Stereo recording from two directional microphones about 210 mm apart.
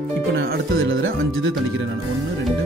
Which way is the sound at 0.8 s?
60° right (ahead or behind).